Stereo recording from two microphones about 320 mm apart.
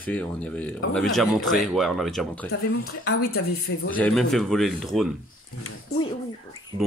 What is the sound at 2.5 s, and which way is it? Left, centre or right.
Speech, left.